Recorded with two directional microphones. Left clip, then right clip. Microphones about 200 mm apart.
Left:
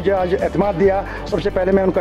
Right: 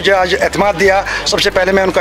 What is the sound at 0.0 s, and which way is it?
Speech, 10° right (ahead or behind).